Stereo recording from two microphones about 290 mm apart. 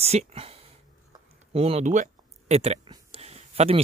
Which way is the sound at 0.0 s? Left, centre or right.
Right.